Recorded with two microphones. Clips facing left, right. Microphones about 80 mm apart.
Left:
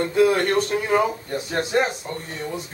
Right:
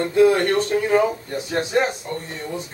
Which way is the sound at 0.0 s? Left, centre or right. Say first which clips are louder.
Right 2 dB; centre.